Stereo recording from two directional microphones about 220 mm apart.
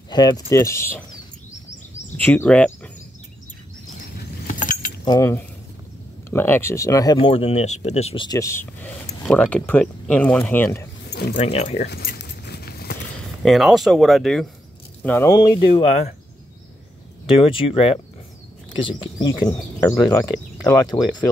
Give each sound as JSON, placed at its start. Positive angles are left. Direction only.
{"t": 0.1, "sound": "speech", "side_deg": 20}
{"t": 2.1, "sound": "speech", "side_deg": 10}
{"t": 4.5, "sound": "keys jangling", "side_deg": 35}
{"t": 5.0, "sound": "speech", "side_deg": 15}
{"t": 11.3, "sound": "speech", "side_deg": 30}
{"t": 11.9, "sound": "dog", "side_deg": 45}
{"t": 13.4, "sound": "speech", "side_deg": 0}
{"t": 15.0, "sound": "speech", "side_deg": 15}
{"t": 17.3, "sound": "speech", "side_deg": 25}